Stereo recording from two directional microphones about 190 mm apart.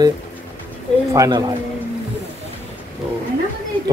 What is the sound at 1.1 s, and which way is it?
Speech, 20° right (ahead or behind).